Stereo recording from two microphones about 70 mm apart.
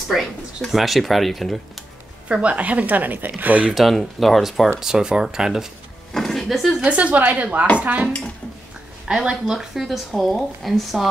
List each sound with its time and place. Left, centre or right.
0.1 s speech: centre
2.2 s a woman's voice: centre
3.7 s speech: centre
6.1 s speech: centre
6.8 s a woman's voice: centre
9.0 s speech: centre